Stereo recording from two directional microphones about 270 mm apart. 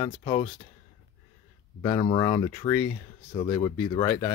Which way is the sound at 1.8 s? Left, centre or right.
Centre.